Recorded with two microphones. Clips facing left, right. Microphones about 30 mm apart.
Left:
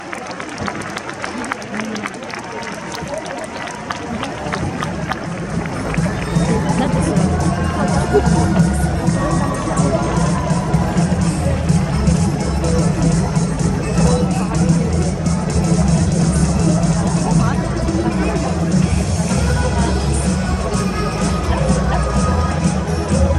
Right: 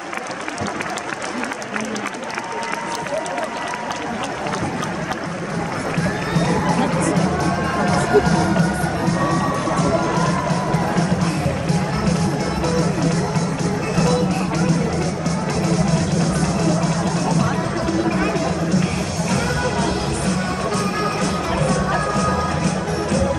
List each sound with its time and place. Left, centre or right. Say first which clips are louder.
6.3 s music: left 1 dB; right; by 23.2 s centre